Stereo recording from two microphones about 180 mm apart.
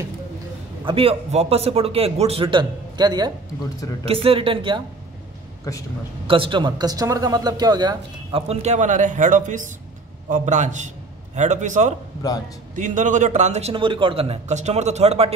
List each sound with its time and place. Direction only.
0.8 s a man's voice: 30° right (ahead or behind)
6.2 s a man's voice: 30° right (ahead or behind)